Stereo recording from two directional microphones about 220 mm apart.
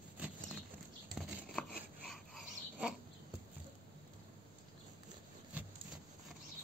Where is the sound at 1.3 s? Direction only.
Centre (ahead or behind).